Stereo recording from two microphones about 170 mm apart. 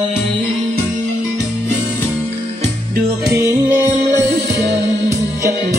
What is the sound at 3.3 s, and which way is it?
Music, 15° right (ahead or behind).